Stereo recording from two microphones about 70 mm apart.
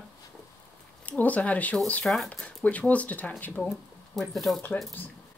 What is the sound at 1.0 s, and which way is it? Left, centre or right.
Speech, left.